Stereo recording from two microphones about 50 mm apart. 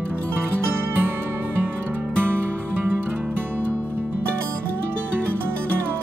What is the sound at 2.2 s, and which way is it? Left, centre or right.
Music, right.